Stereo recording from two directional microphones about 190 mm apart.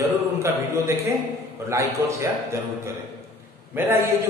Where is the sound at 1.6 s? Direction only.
15° right (ahead or behind).